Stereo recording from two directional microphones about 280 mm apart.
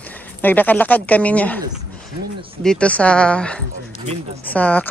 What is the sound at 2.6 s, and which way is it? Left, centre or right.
Speech, centre.